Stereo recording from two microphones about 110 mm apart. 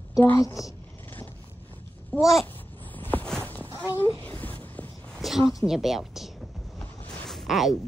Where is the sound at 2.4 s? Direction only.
15° left (ahead or behind).